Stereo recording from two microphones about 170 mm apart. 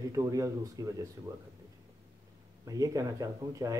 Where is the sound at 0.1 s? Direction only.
20° right (ahead or behind).